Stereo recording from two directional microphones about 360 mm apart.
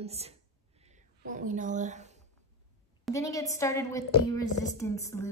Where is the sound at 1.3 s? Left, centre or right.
Right.